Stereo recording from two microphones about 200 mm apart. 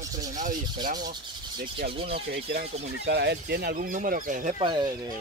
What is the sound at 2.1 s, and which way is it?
Speech, 55° right (ahead or behind).